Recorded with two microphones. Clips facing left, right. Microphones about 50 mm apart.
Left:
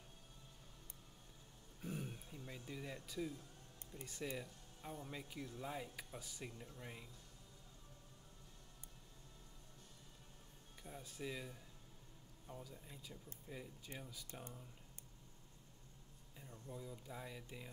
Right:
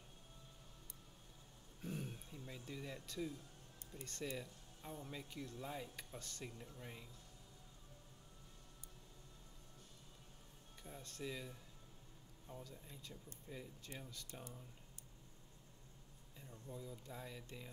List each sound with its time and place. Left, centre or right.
1.8 s throat clearing: centre
3.9 s speech: centre
10.8 s speech: centre
16.3 s speech: centre